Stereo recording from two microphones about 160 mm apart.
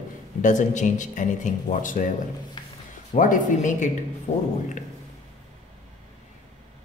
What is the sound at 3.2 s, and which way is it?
A man's voice, 55° left (ahead or behind).